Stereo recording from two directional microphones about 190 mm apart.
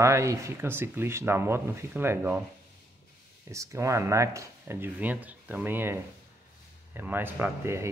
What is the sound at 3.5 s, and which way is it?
Speech, 15° right (ahead or behind).